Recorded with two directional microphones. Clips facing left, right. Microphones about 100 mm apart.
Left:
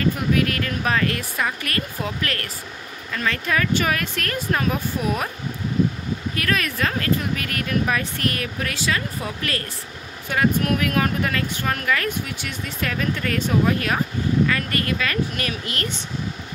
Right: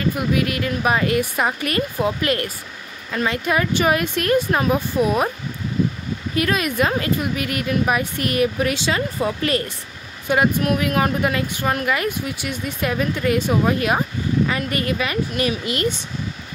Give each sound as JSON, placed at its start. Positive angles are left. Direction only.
{"t": 0.3, "sound": "speech", "side_deg": -15}
{"t": 6.3, "sound": "speech", "side_deg": -20}